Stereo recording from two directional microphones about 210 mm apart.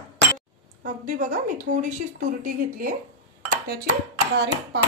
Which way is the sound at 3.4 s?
45° right (ahead or behind).